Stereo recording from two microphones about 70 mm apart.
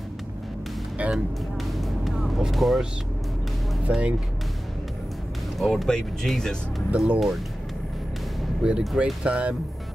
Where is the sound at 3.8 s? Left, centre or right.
Centre.